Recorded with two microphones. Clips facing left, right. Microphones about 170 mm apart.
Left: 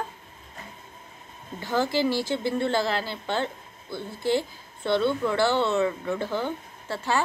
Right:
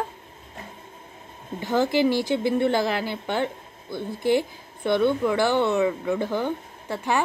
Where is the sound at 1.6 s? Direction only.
20° right (ahead or behind).